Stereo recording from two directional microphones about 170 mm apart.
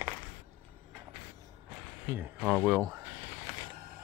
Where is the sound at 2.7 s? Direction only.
20° right (ahead or behind).